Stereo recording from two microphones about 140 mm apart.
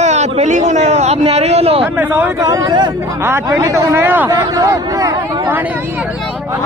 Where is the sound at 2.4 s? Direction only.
25° right (ahead or behind).